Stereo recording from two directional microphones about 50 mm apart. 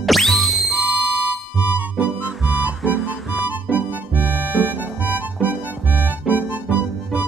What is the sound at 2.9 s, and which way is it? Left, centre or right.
Music, centre.